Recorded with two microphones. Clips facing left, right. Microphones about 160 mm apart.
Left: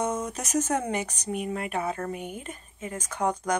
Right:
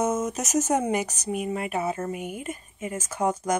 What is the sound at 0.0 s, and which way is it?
Speech, 5° right (ahead or behind).